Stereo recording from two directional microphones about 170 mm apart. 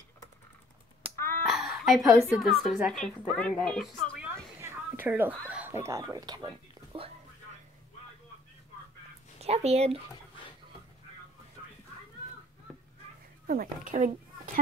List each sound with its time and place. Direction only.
1.1 s a sound: 15° left (ahead or behind)
1.4 s a woman's voice: centre (ahead or behind)
4.6 s a woman's voice: 15° right (ahead or behind)
9.4 s speech: 40° right (ahead or behind)
12.7 s a sound: centre (ahead or behind)
13.5 s speech: 55° right (ahead or behind)